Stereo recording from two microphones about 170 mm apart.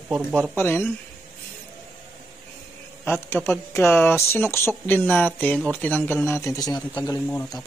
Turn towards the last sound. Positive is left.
turn(degrees=20)  # may be behind; listen again after turning